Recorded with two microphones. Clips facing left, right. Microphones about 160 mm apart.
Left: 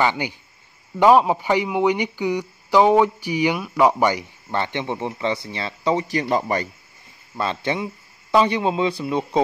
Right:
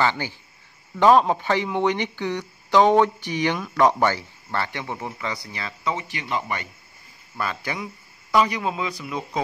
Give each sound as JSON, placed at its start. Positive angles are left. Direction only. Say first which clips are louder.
{"t": 0.0, "sound": "speech", "louder": "left 2 dB", "side_deg": 15}
{"t": 7.3, "sound": "a man's voice", "louder": "left 5 dB", "side_deg": 25}